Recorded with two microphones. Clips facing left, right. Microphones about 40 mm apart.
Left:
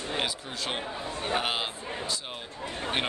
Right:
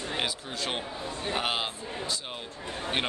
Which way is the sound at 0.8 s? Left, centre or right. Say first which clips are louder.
Left 1 dB; left.